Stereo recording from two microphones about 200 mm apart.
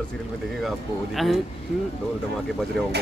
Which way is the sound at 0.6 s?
Centre (ahead or behind).